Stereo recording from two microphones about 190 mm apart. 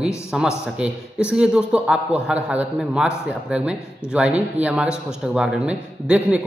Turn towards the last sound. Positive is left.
turn(degrees=-5)  # may be behind; listen again after turning